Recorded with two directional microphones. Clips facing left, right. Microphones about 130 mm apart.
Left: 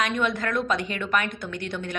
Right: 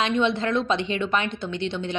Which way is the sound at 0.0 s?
25° right (ahead or behind).